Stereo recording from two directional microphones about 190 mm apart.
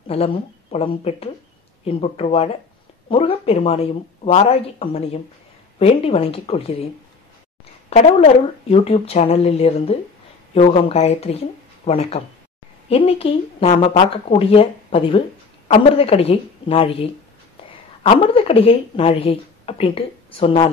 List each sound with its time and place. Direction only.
0.1 s speech: 30° left (ahead or behind)
8.2 s a woman's voice: 30° left (ahead or behind)